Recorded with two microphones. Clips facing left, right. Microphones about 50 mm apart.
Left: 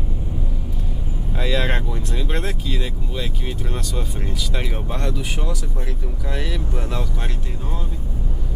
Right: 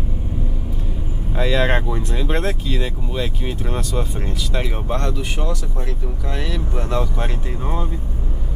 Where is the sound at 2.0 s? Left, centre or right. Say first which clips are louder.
Right 4 dB; centre; by 8.0 s right.